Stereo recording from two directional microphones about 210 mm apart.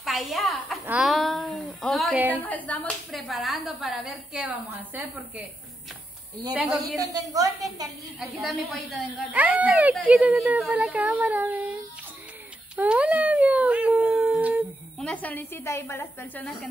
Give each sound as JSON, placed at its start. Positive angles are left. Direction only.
{"t": 0.0, "sound": "a sound", "side_deg": 0}
{"t": 2.4, "sound": "a woman's voice", "side_deg": 5}
{"t": 6.5, "sound": "a woman's voice", "side_deg": -5}
{"t": 7.1, "sound": "a woman's voice", "side_deg": -15}
{"t": 8.2, "sound": "a woman's voice", "side_deg": 0}
{"t": 12.7, "sound": "speech", "side_deg": -5}
{"t": 15.0, "sound": "a woman's voice", "side_deg": 10}